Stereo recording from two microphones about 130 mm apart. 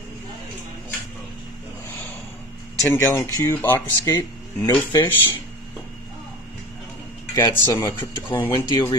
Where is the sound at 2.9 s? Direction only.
20° left (ahead or behind).